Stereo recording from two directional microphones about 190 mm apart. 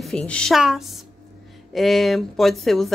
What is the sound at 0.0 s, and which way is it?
A woman's voice, 5° left (ahead or behind).